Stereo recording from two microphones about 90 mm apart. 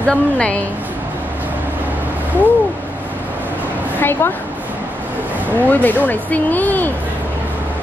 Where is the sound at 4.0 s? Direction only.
25° left (ahead or behind).